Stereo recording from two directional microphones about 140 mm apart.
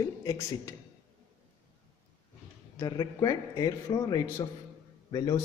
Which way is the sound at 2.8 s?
30° left (ahead or behind).